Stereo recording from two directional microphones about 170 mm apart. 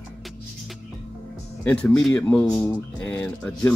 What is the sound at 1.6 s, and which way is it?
Speech, 5° left (ahead or behind).